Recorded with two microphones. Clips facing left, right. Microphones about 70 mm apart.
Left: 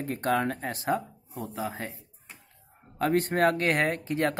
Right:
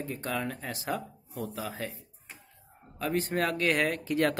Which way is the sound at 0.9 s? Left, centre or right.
Left.